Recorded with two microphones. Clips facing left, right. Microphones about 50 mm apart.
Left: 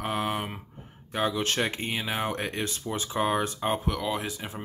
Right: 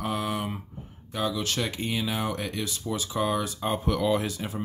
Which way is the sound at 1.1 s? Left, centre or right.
Left.